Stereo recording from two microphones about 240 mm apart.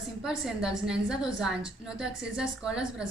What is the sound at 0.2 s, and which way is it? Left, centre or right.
A woman's voice, centre.